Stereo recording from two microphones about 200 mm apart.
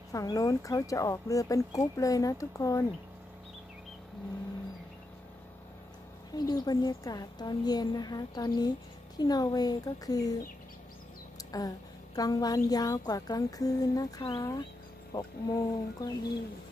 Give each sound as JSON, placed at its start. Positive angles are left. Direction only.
{"t": 0.1, "sound": "speech", "side_deg": 15}
{"t": 6.3, "sound": "a woman's voice", "side_deg": 20}
{"t": 11.3, "sound": "a sound", "side_deg": 20}
{"t": 12.2, "sound": "a woman's voice", "side_deg": 20}